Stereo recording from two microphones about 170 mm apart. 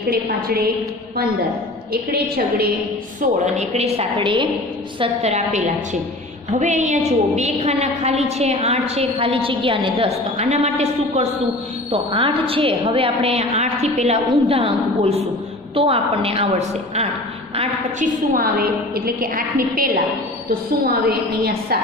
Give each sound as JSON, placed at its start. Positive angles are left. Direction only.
{"t": 1.9, "sound": "a woman's voice", "side_deg": -65}
{"t": 3.2, "sound": "a woman's voice", "side_deg": -40}
{"t": 5.0, "sound": "a woman's voice", "side_deg": -40}
{"t": 18.9, "sound": "a woman's voice", "side_deg": -60}
{"t": 20.8, "sound": "a woman's voice", "side_deg": -65}